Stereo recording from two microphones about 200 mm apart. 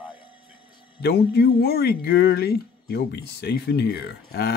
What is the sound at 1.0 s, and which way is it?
Speech, 55° left (ahead or behind).